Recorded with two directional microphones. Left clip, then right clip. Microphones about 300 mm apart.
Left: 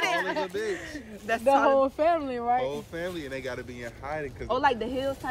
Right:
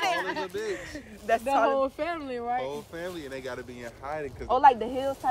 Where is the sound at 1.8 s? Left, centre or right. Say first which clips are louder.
Left 5 dB; centre.